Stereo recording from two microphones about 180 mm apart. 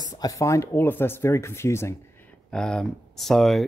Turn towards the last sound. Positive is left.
turn(degrees=0)  # may be behind; listen again after turning